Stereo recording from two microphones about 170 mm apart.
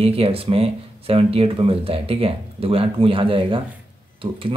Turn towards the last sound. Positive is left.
turn(degrees=-30)  # may be behind; listen again after turning